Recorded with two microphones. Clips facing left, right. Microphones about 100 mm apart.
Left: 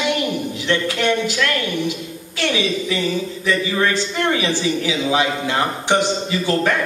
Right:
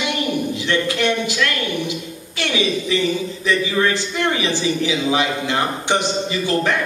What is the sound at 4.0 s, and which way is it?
Speech, 20° right (ahead or behind).